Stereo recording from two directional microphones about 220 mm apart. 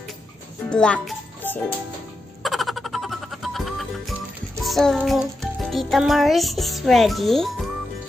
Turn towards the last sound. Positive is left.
turn(degrees=0)  # may be behind; listen again after turning